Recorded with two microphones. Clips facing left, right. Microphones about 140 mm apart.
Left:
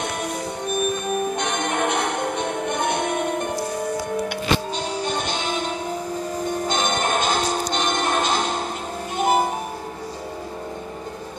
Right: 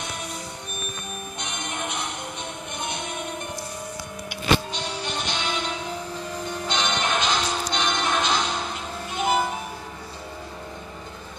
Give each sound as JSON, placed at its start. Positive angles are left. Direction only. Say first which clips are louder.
{"t": 0.0, "sound": "music", "louder": "left 8 dB", "side_deg": 55}
{"t": 4.3, "sound": "music", "louder": "left 1 dB", "side_deg": 45}